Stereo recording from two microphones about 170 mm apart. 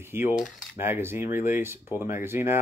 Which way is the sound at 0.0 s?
15° right (ahead or behind).